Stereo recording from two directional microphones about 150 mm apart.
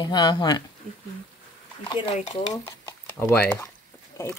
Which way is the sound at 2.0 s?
40° left (ahead or behind).